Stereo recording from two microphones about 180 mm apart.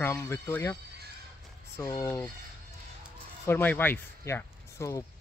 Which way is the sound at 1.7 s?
15° left (ahead or behind).